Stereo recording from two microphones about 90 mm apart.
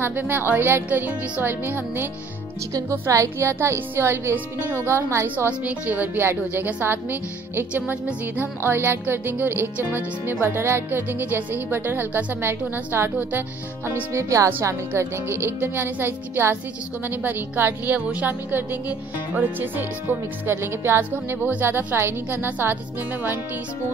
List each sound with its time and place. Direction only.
0.0 s a woman's voice: 20° right (ahead or behind)
2.7 s a woman's voice: 35° right (ahead or behind)